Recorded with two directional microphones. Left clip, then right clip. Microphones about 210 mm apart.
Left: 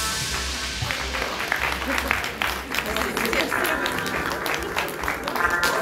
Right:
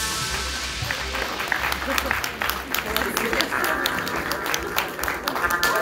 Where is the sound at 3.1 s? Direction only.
55° right (ahead or behind).